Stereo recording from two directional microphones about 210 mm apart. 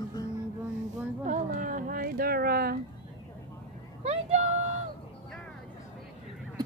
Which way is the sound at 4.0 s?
30° right (ahead or behind).